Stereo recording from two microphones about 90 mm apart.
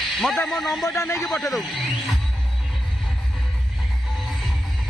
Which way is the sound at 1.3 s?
Centre (ahead or behind).